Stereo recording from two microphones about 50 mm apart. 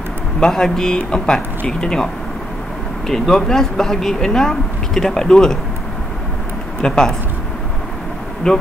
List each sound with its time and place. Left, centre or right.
0.4 s speech: centre
3.1 s speech: centre
6.8 s speech: centre
8.5 s speech: centre